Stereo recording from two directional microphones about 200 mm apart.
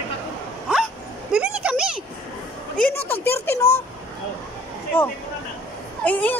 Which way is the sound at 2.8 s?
10° left (ahead or behind).